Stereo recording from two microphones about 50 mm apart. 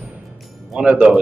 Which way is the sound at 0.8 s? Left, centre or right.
Centre.